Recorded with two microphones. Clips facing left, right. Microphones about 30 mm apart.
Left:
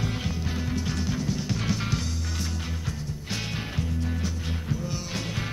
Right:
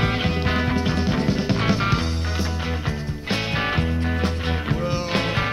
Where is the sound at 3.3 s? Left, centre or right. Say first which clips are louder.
Right 11 dB; right.